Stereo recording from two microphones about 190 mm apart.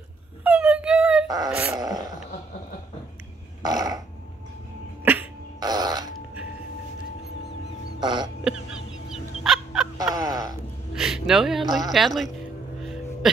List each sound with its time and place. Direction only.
0.4 s a sound: 5° right (ahead or behind)
1.5 s wail: 10° right (ahead or behind)
3.6 s burping: 20° right (ahead or behind)
5.0 s cough: 10° right (ahead or behind)
5.6 s fart: 20° right (ahead or behind)
8.0 s throat clearing: 25° right (ahead or behind)
8.5 s a sound: 5° right (ahead or behind)
9.9 s a sound: 20° right (ahead or behind)
11.0 s gasp: 5° right (ahead or behind)
11.7 s music: centre (ahead or behind)